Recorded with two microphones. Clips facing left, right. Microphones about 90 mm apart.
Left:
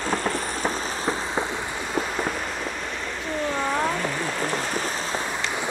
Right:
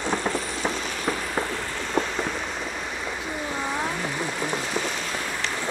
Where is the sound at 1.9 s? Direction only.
5° left (ahead or behind).